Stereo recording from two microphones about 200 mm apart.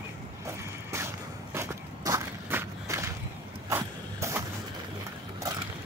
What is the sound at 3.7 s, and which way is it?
Vehicle, 15° right (ahead or behind).